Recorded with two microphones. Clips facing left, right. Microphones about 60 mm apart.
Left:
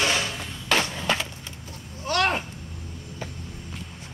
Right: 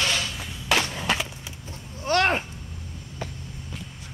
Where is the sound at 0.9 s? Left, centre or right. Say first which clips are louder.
Even; centre.